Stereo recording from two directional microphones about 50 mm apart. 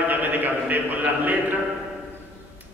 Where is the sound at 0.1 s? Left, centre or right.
Right.